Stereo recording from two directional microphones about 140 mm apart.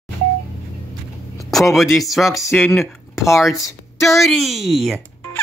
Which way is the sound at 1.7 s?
Centre (ahead or behind).